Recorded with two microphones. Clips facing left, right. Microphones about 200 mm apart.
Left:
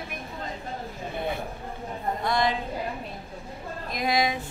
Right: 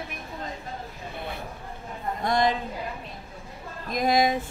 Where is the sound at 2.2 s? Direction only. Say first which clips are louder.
Right 3 dB; 45° right (ahead or behind).